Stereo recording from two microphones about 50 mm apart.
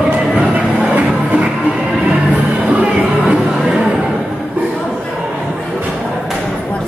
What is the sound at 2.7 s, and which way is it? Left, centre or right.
Music, right.